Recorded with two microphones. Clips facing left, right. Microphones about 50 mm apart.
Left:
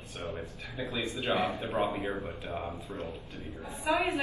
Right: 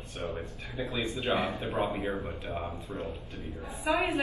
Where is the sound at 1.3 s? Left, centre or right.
Right.